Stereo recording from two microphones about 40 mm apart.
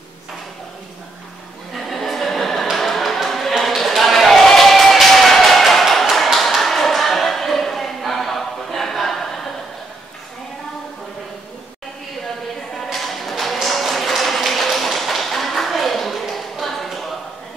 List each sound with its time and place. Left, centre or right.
1.8 s music: centre
3.3 s a sound: centre
12.8 s tap: centre